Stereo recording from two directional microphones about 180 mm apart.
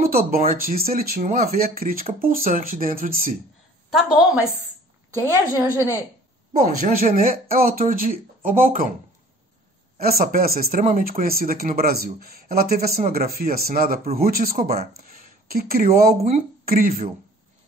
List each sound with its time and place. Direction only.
0.0 s speech: 55° right (ahead or behind)
5.1 s a woman's voice: 15° right (ahead or behind)
6.6 s speech: 50° right (ahead or behind)
9.9 s speech: 55° right (ahead or behind)